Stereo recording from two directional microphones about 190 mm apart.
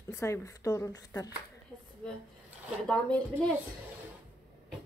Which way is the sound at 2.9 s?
5° left (ahead or behind).